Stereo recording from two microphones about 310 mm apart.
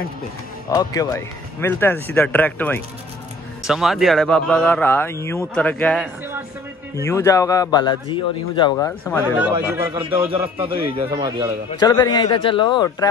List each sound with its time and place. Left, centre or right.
0.7 s a man's voice: centre
11.8 s a man's voice: centre